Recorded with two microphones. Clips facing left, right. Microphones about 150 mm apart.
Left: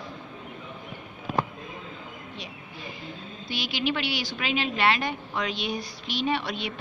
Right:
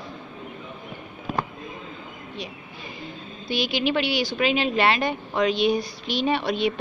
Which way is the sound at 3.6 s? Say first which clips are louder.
Right 5 dB; 20° right (ahead or behind).